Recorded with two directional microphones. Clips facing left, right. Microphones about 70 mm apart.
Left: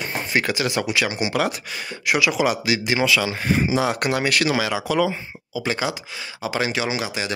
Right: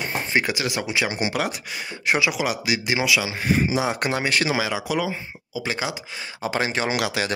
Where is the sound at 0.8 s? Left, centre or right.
Right.